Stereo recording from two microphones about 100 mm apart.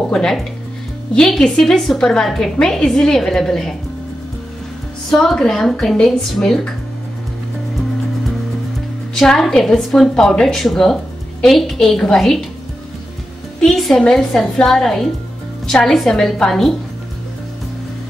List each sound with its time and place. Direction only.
0.1 s a woman's voice: 5° left (ahead or behind)
5.1 s a woman's voice: centre (ahead or behind)
9.1 s a woman's voice: 5° left (ahead or behind)
13.6 s a woman's voice: centre (ahead or behind)